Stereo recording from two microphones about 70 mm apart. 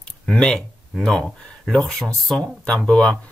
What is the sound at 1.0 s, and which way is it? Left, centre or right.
Speech, centre.